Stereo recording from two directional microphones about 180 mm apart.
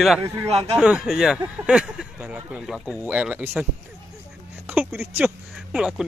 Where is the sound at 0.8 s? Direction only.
5° right (ahead or behind).